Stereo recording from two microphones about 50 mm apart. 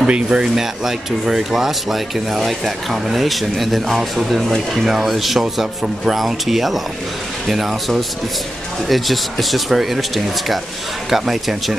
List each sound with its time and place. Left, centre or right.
0.0 s speech: centre
0.6 s speech: centre